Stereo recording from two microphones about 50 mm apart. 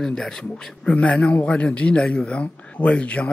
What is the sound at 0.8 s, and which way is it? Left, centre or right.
Speech, left.